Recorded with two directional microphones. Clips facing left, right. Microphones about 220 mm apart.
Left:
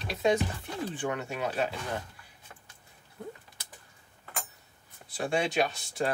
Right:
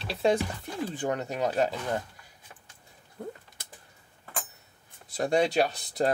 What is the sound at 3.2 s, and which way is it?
Typing, 45° right (ahead or behind).